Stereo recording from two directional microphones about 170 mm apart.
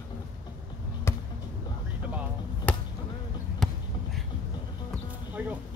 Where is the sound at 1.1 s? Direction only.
15° left (ahead or behind).